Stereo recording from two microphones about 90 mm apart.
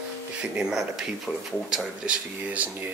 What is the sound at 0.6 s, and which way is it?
Speech, 5° right (ahead or behind).